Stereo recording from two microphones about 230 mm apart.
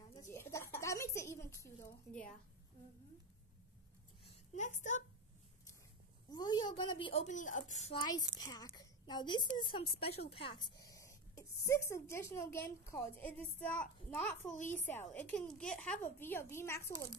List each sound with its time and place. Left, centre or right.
0.1 s a woman's voice: centre
4.2 s a sound: left
6.3 s a woman's voice: centre
7.2 s a woman's voice: left; by 14.3 s centre
14.5 s a woman's voice: left
15.1 s a woman's voice: centre